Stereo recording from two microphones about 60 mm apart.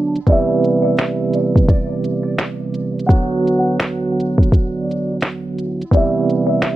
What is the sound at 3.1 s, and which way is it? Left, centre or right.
Music, centre.